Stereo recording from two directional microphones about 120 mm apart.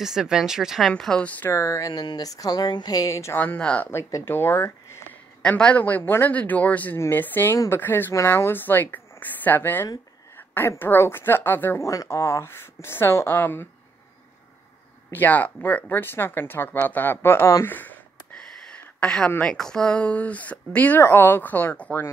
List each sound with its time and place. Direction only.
0.0 s speech: 5° right (ahead or behind)
1.5 s speech: 25° left (ahead or behind)
5.4 s speech: 10° left (ahead or behind)
7.5 s speech: 30° left (ahead or behind)
7.8 s speech: 15° left (ahead or behind)
11.9 s speech: 30° left (ahead or behind)
15.1 s speech: 15° left (ahead or behind)